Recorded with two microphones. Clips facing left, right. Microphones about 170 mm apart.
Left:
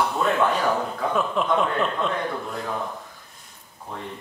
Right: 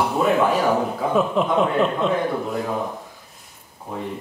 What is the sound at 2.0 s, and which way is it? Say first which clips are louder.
Speech: right 5 dB; 5° right (ahead or behind).